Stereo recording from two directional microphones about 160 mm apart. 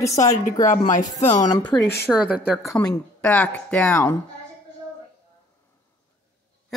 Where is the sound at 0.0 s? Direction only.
20° left (ahead or behind).